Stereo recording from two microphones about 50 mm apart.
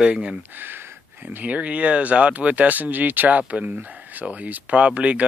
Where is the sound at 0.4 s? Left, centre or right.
Right.